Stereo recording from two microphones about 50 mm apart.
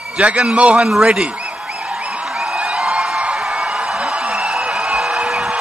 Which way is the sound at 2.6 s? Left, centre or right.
Centre.